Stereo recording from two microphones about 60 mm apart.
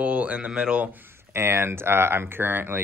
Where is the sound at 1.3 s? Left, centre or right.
Right.